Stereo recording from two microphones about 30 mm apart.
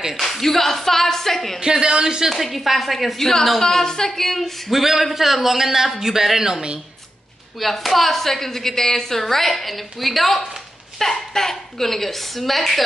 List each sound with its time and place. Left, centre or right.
0.1 s a woman's voice: centre
1.6 s a man's voice: right
2.2 s speech: centre
3.2 s a woman's voice: centre
4.6 s a man's voice: centre
7.5 s a woman's voice: centre